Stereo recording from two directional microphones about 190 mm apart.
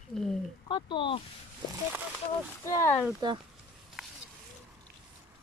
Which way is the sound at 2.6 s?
15° left (ahead or behind).